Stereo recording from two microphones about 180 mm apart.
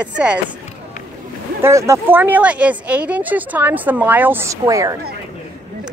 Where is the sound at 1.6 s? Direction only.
15° right (ahead or behind).